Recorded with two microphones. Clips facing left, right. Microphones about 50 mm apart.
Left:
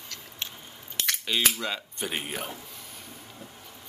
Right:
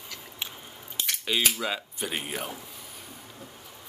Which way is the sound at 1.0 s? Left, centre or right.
Left.